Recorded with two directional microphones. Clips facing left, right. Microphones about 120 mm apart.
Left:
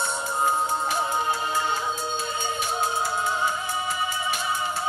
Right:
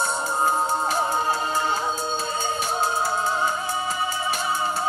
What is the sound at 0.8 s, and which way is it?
Music, 35° right (ahead or behind).